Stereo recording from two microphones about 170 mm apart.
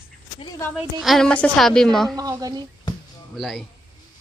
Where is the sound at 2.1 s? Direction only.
20° right (ahead or behind).